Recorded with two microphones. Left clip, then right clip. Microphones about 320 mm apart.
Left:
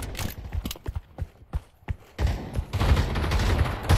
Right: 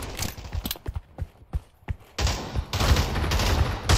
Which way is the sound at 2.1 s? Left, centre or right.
Right.